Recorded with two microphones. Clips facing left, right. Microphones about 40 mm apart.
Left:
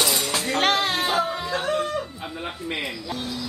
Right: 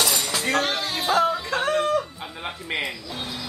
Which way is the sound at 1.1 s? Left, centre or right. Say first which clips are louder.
Right 3 dB; right.